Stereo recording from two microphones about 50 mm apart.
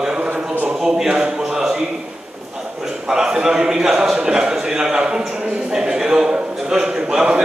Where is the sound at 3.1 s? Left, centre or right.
Centre.